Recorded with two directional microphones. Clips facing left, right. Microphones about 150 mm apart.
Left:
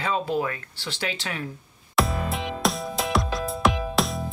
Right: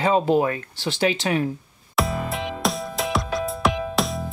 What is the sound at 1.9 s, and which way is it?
Music, centre (ahead or behind).